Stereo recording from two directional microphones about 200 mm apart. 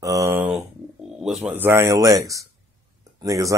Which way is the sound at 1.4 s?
10° right (ahead or behind).